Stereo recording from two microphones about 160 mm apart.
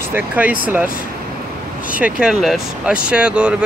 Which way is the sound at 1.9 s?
5° right (ahead or behind).